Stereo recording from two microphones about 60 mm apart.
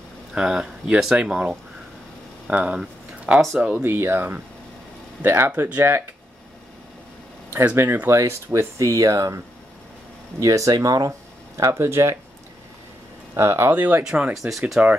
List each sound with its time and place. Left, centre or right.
0.3 s speech: centre
3.8 s speech: right
7.7 s speech: right
8.1 s speech: right
8.7 s speech: right
10.4 s speech: right
13.3 s speech: right
14.0 s speech: centre